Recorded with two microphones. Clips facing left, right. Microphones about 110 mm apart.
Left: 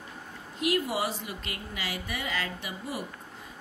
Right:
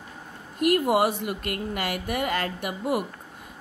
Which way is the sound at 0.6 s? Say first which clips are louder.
Right 7 dB; 50° right (ahead or behind).